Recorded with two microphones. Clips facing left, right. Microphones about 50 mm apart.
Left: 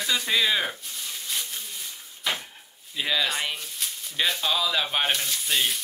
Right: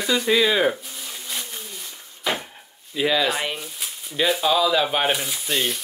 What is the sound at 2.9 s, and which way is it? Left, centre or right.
Speech, centre.